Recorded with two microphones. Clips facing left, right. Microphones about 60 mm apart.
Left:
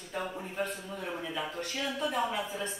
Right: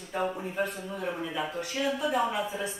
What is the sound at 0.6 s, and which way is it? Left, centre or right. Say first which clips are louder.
Speech: right 4 dB; centre.